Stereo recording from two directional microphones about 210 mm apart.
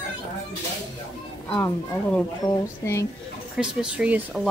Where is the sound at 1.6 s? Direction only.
10° left (ahead or behind).